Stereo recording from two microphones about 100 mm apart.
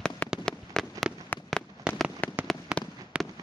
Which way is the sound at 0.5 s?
5° left (ahead or behind).